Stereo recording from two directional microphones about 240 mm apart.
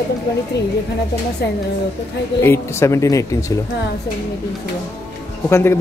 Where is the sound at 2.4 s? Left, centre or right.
Centre.